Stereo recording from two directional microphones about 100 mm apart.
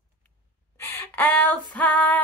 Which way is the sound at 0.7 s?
20° left (ahead or behind).